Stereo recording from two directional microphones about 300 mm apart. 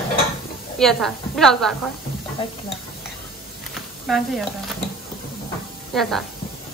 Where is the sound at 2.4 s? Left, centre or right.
Centre.